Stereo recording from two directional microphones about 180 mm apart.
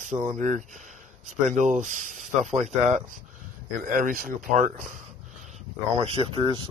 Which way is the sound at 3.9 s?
50° right (ahead or behind).